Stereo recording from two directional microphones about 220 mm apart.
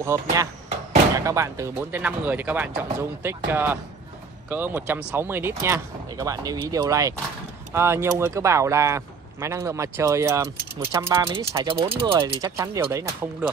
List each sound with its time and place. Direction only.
0.0 s speech: 15° right (ahead or behind)
11.2 s speech: 25° right (ahead or behind)